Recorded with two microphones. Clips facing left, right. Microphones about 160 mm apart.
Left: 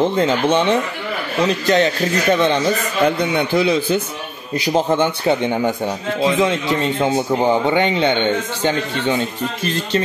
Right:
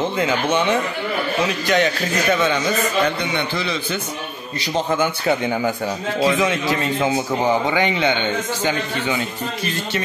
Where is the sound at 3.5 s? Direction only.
10° left (ahead or behind).